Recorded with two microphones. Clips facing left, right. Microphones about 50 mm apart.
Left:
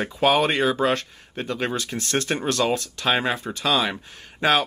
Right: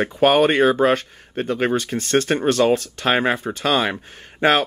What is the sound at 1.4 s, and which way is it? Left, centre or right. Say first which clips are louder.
Speech: right 5 dB; centre.